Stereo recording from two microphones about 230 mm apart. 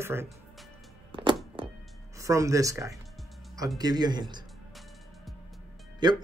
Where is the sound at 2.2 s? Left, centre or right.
Centre.